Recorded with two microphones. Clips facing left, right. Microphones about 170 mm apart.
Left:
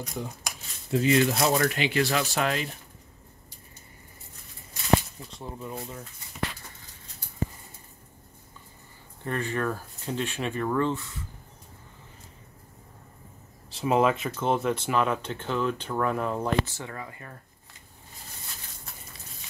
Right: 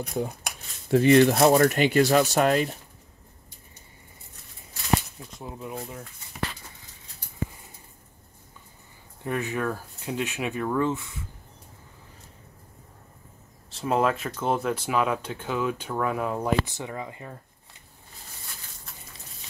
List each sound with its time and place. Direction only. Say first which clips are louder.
0.0 s speech: right 5 dB; 60° right (ahead or behind)
1.2 s speech: right 6 dB; 50° right (ahead or behind)
5.4 s speech: right 1 dB; 5° right (ahead or behind)
9.2 s speech: right 1 dB; 10° right (ahead or behind)
13.7 s speech: left 1 dB; centre (ahead or behind); by 17.4 s 20° right (ahead or behind)